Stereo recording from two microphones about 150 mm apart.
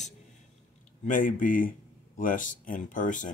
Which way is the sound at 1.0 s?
65° left (ahead or behind).